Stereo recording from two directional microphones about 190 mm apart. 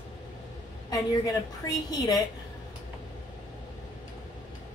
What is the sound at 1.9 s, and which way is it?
Speech, 20° left (ahead or behind).